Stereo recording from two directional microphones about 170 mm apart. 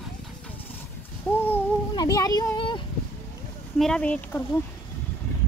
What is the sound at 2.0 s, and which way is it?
Speech, 20° left (ahead or behind).